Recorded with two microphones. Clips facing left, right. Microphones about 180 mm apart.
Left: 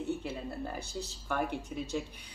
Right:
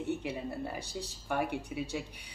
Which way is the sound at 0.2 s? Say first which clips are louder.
Right 1 dB; 15° right (ahead or behind).